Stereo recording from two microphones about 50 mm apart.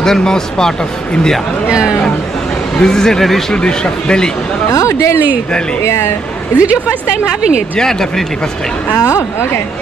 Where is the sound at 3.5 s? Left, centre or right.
Centre.